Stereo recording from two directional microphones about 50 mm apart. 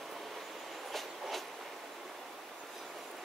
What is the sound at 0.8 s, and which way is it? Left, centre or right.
Train, centre.